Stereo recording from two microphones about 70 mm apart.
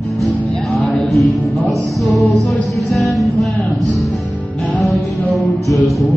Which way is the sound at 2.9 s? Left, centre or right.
Centre.